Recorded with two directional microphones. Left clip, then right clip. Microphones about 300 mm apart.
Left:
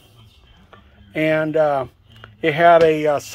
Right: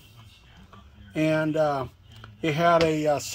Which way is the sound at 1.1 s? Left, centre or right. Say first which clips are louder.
Left 6 dB; left.